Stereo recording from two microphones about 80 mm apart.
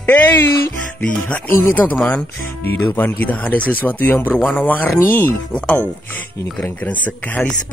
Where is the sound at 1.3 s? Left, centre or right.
Left.